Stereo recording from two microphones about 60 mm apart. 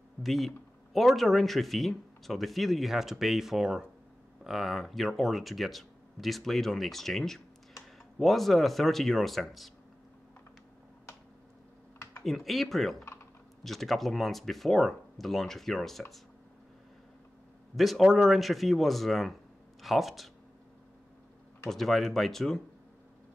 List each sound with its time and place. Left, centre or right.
0.2 s speech: centre
12.2 s speech: centre
13.0 s typing: left
13.7 s speech: centre
17.7 s speech: centre
21.6 s speech: centre